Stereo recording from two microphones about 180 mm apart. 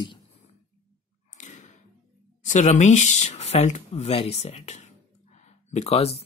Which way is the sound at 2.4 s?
40° left (ahead or behind).